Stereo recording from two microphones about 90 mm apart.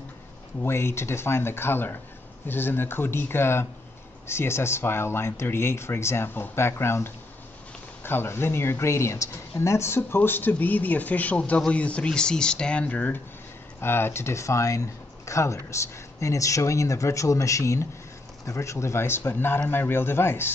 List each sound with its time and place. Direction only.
0.6 s speech: 30° left (ahead or behind)